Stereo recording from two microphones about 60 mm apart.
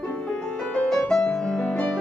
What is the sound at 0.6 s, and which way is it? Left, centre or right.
Music, centre.